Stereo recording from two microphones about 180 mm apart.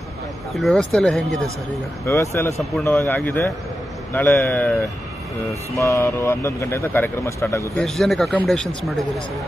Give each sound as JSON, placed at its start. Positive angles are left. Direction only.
{"t": 0.6, "sound": "speech", "side_deg": 0}
{"t": 2.0, "sound": "speech", "side_deg": 15}
{"t": 7.7, "sound": "speech", "side_deg": 5}